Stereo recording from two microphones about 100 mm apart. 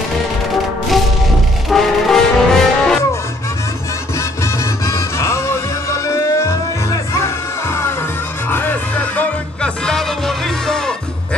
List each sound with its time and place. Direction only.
1.7 s music: centre (ahead or behind)
4.2 s music: 30° left (ahead or behind); by 11.0 s 5° left (ahead or behind)